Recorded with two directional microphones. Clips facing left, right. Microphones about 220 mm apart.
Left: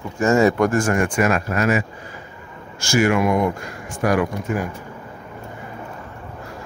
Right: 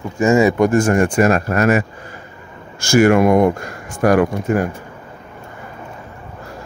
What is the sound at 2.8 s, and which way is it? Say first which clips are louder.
Speech: right 6 dB; 50° right (ahead or behind).